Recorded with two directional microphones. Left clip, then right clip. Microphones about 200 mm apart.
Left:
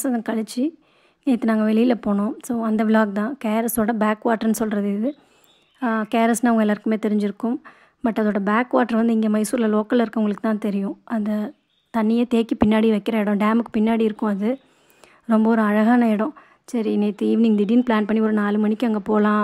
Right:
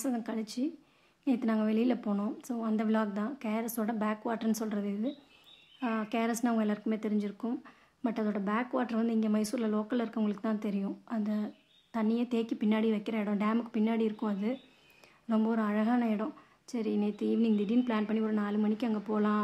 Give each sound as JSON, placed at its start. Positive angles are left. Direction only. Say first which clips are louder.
{"t": 0.0, "sound": "speech", "louder": "left 11 dB", "side_deg": 35}